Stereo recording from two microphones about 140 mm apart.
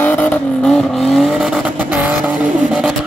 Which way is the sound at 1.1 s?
Centre (ahead or behind).